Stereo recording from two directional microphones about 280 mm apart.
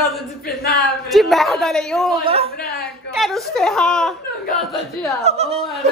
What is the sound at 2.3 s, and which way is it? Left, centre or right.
Speech, right.